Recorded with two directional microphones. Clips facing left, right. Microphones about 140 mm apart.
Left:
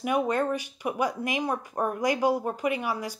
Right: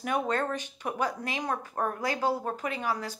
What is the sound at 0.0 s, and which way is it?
Speech, 10° left (ahead or behind).